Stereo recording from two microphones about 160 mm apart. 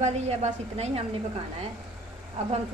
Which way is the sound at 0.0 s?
45° right (ahead or behind).